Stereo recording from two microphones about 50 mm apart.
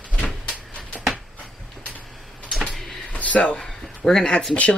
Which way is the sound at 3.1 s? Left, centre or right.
Left.